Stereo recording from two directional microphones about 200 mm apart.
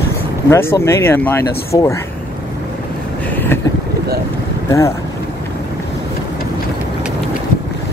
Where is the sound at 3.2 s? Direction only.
10° left (ahead or behind).